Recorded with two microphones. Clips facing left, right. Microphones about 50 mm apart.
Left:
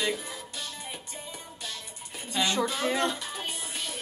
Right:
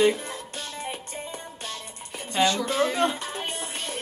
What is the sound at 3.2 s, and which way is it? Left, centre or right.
Music, right.